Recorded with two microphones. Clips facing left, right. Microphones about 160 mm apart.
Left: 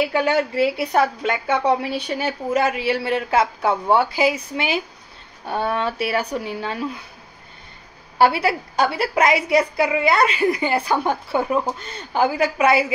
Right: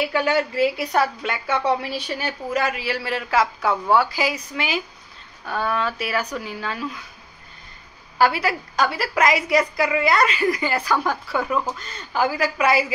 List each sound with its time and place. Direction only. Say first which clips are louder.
0.1 s a woman's voice: left 2 dB; 25° left (ahead or behind)
8.2 s a woman's voice: left 3 dB; 30° left (ahead or behind)